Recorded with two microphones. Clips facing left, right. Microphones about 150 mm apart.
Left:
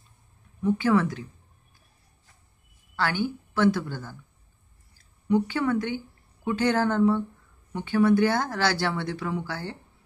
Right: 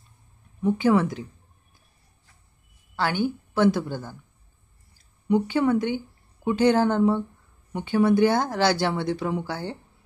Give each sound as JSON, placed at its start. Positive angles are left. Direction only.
{"t": 0.6, "sound": "speech", "side_deg": -20}
{"t": 3.0, "sound": "a woman's voice", "side_deg": -15}